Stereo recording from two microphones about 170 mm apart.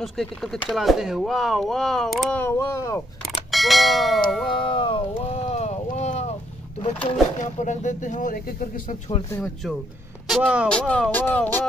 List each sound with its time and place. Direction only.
0.0 s speech: centre (ahead or behind)
2.4 s speech: 15° left (ahead or behind)
3.5 s speech: centre (ahead or behind)
4.5 s speech: 30° left (ahead or behind); by 8.6 s 50° left (ahead or behind)
10.2 s speech: 5° right (ahead or behind)